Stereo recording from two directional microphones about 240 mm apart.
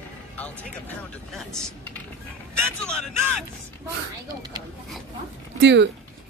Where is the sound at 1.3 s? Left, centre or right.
Centre.